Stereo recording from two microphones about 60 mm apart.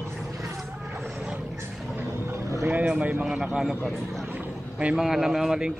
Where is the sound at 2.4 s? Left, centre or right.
Right.